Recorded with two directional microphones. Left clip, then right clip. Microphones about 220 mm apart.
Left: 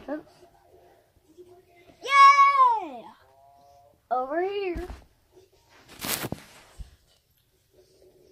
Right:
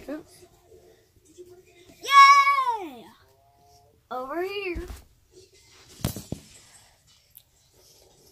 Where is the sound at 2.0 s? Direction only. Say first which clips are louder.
Right 1 dB; 5° right (ahead or behind).